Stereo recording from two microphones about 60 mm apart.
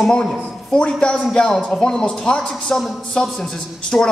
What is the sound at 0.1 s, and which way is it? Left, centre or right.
Speech, centre.